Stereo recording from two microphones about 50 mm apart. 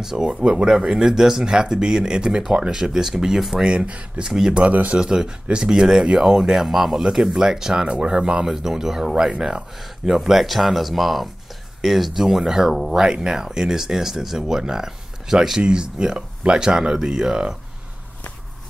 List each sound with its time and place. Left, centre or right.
0.0 s speech: centre
3.6 s speech: right
4.3 s speech: centre
4.6 s speech: right
5.0 s speech: centre